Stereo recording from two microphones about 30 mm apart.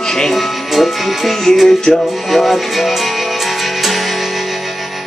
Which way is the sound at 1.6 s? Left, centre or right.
Centre.